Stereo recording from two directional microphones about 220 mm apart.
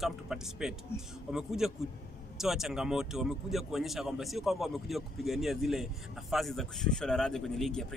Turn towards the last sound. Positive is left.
turn(degrees=0)  # may be behind; listen again after turning